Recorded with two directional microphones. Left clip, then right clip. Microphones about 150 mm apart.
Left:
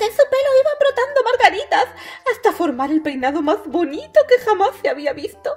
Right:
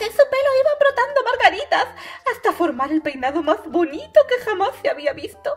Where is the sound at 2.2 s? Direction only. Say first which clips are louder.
Left 2 dB; 90° left; by 5.5 s 65° left (ahead or behind).